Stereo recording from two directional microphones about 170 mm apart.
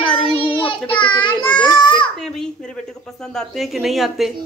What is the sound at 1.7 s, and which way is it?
Speech, 25° left (ahead or behind).